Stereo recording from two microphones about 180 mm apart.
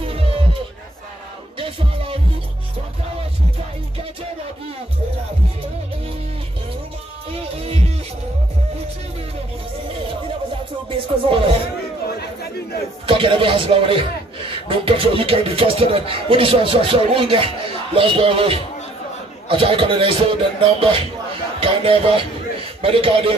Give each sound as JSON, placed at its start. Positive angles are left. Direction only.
{"t": 0.0, "sound": "a sound", "side_deg": -30}
{"t": 7.2, "sound": "music", "side_deg": -35}
{"t": 10.9, "sound": "speech", "side_deg": -30}
{"t": 13.0, "sound": "speech", "side_deg": -30}